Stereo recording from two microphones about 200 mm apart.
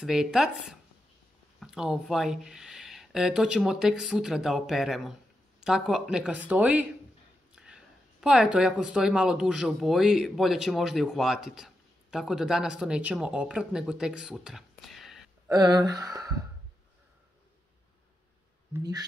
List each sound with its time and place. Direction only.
0.0 s speech: 5° right (ahead or behind)
15.5 s speech: 20° right (ahead or behind)
18.7 s speech: 15° right (ahead or behind)